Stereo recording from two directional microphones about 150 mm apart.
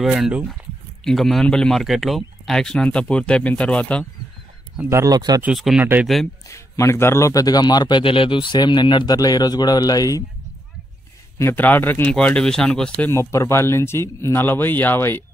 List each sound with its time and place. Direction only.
0.0 s speech: 5° right (ahead or behind)
4.8 s speech: 20° right (ahead or behind)
5.4 s speech: 5° right (ahead or behind)
6.5 s a man's voice: 20° left (ahead or behind)
11.3 s speech: 15° left (ahead or behind)
13.1 s speech: 20° left (ahead or behind)